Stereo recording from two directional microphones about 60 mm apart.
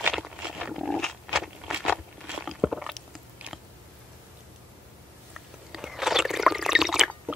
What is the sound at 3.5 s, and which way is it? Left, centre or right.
Chewing, right.